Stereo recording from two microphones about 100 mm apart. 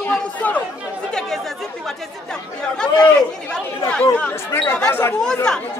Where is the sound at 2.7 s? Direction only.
10° left (ahead or behind).